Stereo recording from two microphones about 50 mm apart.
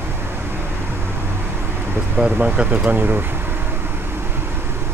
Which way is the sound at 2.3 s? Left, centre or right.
Right.